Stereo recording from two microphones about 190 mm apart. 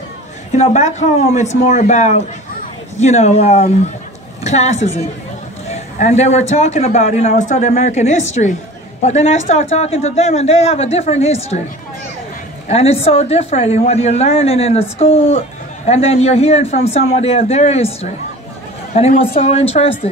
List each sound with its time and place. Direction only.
0.5 s speech: 40° left (ahead or behind)
12.6 s speech: 35° left (ahead or behind)